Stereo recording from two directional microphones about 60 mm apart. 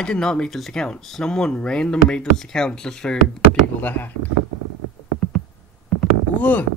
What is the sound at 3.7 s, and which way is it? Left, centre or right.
Speech, left.